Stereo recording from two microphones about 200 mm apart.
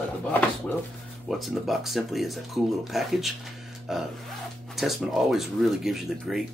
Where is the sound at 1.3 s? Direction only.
Centre (ahead or behind).